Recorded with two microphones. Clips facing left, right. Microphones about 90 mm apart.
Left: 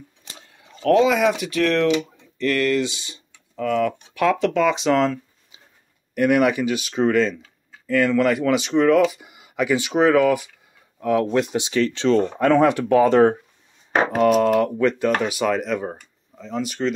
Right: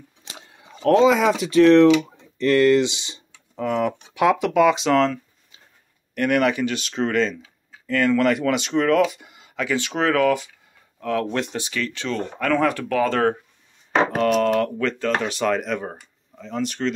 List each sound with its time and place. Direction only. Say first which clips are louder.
0.8 s speech: right 1 dB; 30° right (ahead or behind); by 11.5 s 5° left (ahead or behind)
11.5 s speech: left 6 dB; 20° left (ahead or behind)
11.8 s speech: left 10 dB; 30° left (ahead or behind)
14.2 s speech: left 6 dB; 10° left (ahead or behind)